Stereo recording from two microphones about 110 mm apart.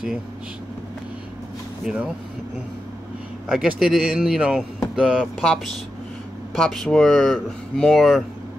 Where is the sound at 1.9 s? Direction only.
5° right (ahead or behind).